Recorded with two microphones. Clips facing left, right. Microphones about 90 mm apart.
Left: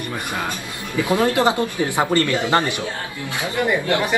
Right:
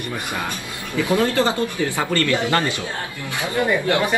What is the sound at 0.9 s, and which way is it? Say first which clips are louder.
Speech: left 1 dB; 20° left (ahead or behind).